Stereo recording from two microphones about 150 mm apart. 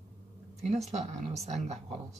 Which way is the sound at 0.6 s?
50° right (ahead or behind).